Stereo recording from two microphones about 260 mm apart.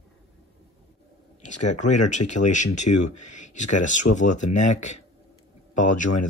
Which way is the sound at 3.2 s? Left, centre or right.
Left.